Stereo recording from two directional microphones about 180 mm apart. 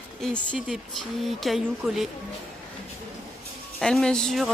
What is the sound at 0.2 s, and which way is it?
A woman's voice, 5° left (ahead or behind).